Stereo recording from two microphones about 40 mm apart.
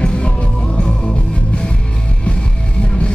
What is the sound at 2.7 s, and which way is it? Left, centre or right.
Music, left.